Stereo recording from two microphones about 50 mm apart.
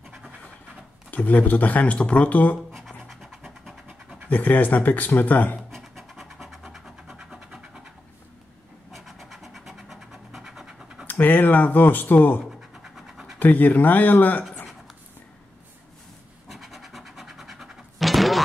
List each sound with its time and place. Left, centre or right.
1.1 s speech: left
3.1 s vehicle: centre
4.3 s speech: left
5.7 s scratch: centre
8.9 s a sound: centre
11.1 s speech: left
12.8 s scratch: centre
13.4 s speech: left
16.4 s scratch: centre